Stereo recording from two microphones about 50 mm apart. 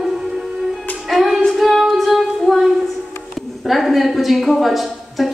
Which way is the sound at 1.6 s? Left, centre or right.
Centre.